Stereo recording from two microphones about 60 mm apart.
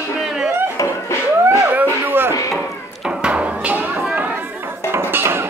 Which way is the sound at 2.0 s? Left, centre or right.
Right.